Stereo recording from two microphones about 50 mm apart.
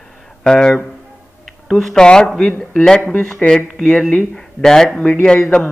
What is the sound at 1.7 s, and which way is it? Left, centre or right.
Speech, centre.